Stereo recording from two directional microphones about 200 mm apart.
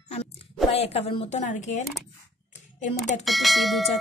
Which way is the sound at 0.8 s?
30° left (ahead or behind).